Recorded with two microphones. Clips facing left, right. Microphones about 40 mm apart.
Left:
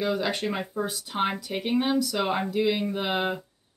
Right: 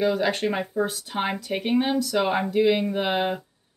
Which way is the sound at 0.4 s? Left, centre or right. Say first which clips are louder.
Right 4 dB; centre.